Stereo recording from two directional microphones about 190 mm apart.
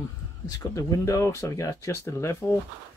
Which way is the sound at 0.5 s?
20° left (ahead or behind).